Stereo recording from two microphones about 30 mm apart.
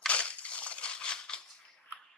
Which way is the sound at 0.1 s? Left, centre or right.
Left.